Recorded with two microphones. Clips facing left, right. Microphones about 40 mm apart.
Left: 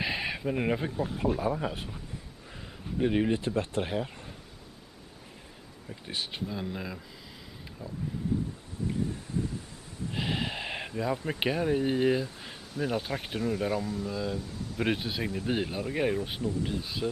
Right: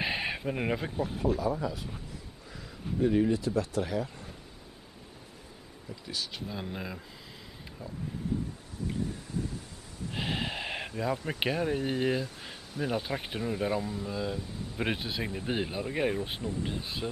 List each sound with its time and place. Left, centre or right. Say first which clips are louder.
0.0 s a sound: even; centre
1.0 s speech: right 1 dB; left
3.0 s speech: right 1 dB; left
6.0 s speech: left 2 dB; left
6.5 s speech: left 2 dB; centre
7.8 s speech: left 2 dB; left
10.1 s a sound: left 1 dB; centre
11.0 s speech: left 1 dB; centre
15.2 s speech: left 4 dB; centre
15.5 s speech: even; centre
16.6 s speech: left 3 dB; centre